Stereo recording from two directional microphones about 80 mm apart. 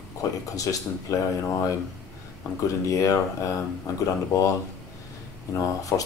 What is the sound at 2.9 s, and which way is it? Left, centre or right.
Speech, left.